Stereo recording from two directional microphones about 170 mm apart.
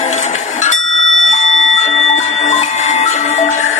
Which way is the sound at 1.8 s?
45° left (ahead or behind).